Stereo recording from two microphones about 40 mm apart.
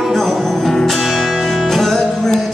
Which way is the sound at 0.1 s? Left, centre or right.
Centre.